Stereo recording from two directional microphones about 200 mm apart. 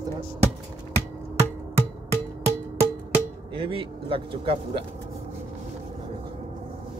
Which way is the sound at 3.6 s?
25° right (ahead or behind).